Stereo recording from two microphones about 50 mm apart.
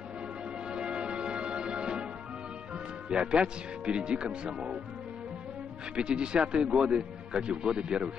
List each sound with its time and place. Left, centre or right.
0.7 s music: right
3.1 s speech: centre
5.9 s speech: centre